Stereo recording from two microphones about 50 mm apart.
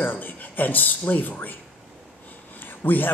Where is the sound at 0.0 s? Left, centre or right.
Left.